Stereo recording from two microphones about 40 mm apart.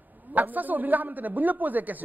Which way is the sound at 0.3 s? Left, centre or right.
Right.